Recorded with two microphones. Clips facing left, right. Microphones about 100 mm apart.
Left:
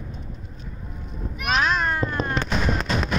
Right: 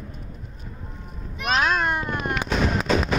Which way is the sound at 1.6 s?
15° right (ahead or behind).